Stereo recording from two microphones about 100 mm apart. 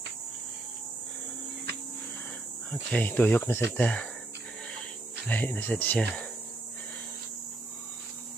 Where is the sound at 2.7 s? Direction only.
10° left (ahead or behind).